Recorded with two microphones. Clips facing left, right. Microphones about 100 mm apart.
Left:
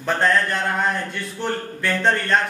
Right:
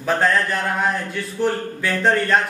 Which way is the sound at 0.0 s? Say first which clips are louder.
Right 1 dB; 5° right (ahead or behind).